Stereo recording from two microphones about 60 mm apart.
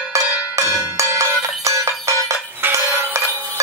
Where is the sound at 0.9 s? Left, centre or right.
Right.